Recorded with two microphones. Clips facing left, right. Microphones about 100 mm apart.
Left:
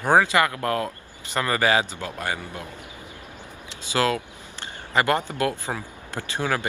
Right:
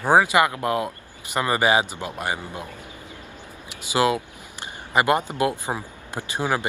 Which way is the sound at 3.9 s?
15° right (ahead or behind).